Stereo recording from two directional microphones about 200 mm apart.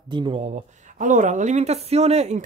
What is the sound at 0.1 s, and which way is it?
Speech, 25° right (ahead or behind).